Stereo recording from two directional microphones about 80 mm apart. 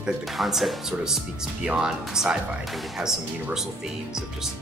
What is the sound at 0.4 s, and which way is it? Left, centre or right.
Speech, centre.